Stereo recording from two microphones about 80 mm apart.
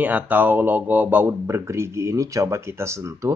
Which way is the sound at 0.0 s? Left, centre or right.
Right.